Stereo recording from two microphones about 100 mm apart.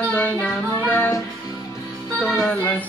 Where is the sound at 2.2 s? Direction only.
5° left (ahead or behind).